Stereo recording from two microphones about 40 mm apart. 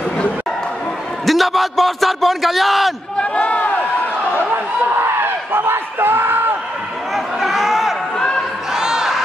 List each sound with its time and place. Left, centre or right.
1.2 s speech: centre
3.2 s speech: left
4.8 s speech: right
7.3 s a sound: centre
8.7 s crowd: centre